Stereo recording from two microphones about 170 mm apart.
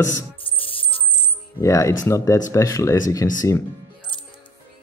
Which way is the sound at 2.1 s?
20° left (ahead or behind).